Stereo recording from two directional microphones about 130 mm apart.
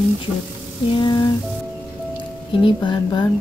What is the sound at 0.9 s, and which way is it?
Speech, 35° left (ahead or behind).